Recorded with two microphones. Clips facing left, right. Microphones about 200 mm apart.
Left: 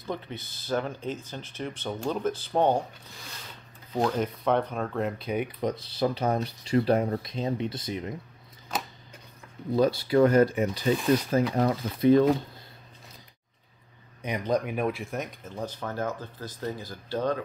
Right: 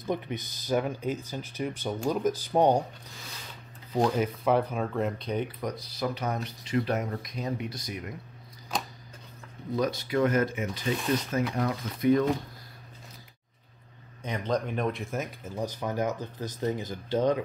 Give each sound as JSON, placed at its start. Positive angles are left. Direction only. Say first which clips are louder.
{"t": 0.0, "sound": "speech", "louder": "right 3 dB", "side_deg": -15}
{"t": 3.9, "sound": "speech", "louder": "right 1 dB", "side_deg": -5}
{"t": 5.4, "sound": "speech", "louder": "left 3 dB", "side_deg": 20}
{"t": 8.7, "sound": "a sound", "louder": "even", "side_deg": 5}
{"t": 9.8, "sound": "speech", "louder": "left 5 dB", "side_deg": 30}
{"t": 14.2, "sound": "speech", "louder": "left 2 dB", "side_deg": 10}